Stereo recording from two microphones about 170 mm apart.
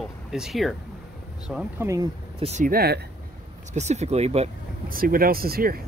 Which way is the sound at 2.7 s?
65° right (ahead or behind).